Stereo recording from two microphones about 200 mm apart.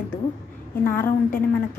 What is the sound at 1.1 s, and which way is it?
Speech, 45° left (ahead or behind).